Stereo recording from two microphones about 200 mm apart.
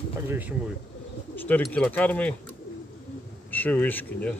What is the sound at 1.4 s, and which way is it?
Speech, 5° left (ahead or behind).